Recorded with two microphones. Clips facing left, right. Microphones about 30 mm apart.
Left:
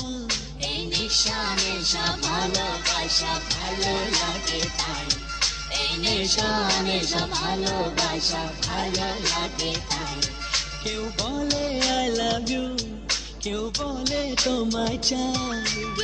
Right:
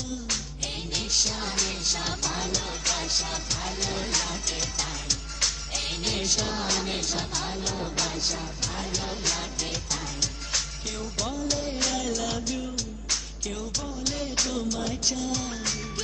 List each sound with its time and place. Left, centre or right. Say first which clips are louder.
0.9 s music: left 2 dB; left
11.1 s music: left 2 dB; left